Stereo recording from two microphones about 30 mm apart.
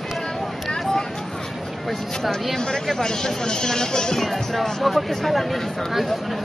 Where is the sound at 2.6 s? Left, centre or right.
Centre.